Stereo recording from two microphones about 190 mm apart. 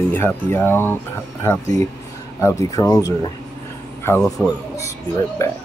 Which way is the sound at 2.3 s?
15° left (ahead or behind).